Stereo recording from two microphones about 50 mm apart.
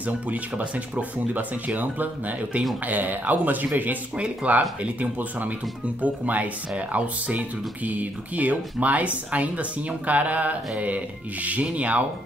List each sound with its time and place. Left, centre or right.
0.0 s speech: right
4.2 s speech: right